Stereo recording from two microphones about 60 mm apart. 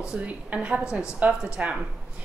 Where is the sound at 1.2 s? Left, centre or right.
Right.